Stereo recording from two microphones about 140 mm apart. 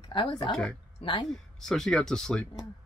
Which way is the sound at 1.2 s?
5° left (ahead or behind).